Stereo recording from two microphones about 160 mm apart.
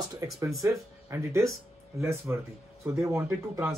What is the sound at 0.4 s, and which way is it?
Speech, 20° right (ahead or behind).